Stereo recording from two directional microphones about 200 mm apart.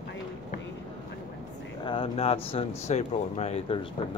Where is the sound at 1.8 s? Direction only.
25° left (ahead or behind).